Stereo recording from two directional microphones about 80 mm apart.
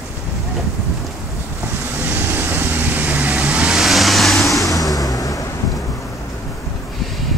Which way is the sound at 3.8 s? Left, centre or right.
Centre.